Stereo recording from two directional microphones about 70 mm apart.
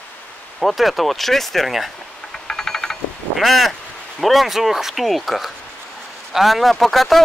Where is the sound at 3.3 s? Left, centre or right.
Centre.